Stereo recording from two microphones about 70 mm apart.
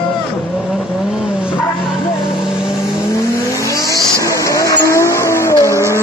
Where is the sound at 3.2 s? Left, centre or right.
Left.